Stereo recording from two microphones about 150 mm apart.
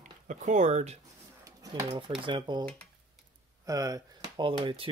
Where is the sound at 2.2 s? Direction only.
30° right (ahead or behind).